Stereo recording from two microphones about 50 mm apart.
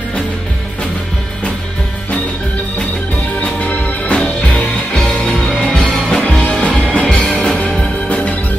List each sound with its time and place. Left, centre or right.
3.4 s music: left
6.4 s music: left
6.7 s music: centre
8.1 s organ: left